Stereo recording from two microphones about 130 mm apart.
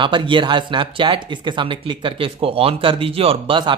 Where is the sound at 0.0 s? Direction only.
40° right (ahead or behind).